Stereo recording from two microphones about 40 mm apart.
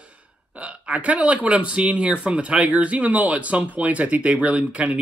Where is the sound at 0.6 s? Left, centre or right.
Right.